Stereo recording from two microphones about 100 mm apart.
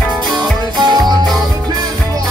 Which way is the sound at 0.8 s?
45° right (ahead or behind).